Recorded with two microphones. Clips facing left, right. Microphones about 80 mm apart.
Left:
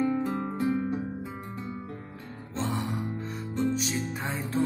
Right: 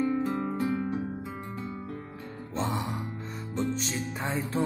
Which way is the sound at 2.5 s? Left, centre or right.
Centre.